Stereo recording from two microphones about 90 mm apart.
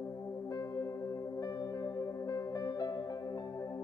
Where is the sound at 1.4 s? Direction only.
40° left (ahead or behind).